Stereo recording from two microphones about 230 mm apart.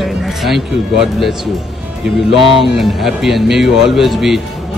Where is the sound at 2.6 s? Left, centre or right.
Centre.